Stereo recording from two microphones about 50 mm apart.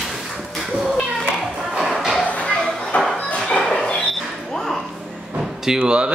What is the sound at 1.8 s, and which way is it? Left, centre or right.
Music, centre.